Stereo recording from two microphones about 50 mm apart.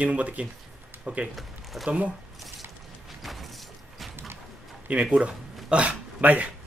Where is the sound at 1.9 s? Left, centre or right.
Right.